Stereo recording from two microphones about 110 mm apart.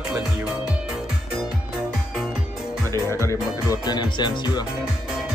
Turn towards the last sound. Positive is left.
turn(degrees=40)  # may be behind; listen again after turning